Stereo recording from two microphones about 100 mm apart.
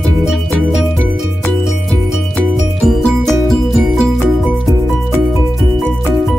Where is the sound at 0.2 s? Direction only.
5° right (ahead or behind).